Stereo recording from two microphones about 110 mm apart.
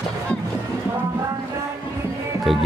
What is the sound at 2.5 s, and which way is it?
Music, centre (ahead or behind).